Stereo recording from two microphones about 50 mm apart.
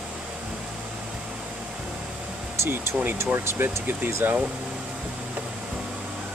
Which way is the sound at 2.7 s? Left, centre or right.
Right.